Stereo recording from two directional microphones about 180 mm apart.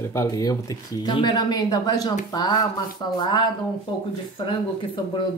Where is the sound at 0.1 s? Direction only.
20° left (ahead or behind).